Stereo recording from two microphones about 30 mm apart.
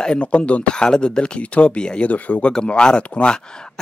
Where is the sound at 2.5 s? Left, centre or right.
Left.